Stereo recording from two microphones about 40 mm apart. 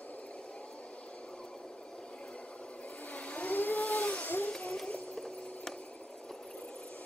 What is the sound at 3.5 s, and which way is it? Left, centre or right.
Vehicle, left.